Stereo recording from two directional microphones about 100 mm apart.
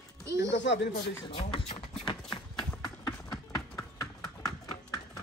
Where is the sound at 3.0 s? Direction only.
45° left (ahead or behind).